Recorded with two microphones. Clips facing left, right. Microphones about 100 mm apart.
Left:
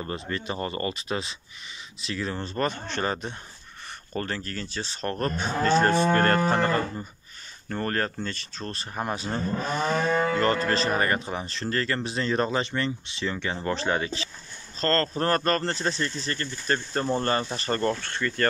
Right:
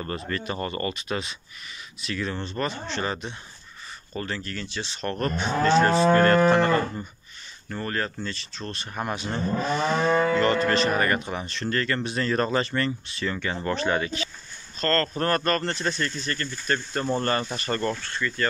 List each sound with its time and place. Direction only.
0.0 s speech: 20° left (ahead or behind)
2.4 s speech: 45° left (ahead or behind)
7.7 s speech: 45° left (ahead or behind)
18.0 s speech: 55° left (ahead or behind)